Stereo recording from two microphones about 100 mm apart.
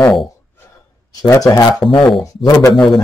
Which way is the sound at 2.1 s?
Centre (ahead or behind).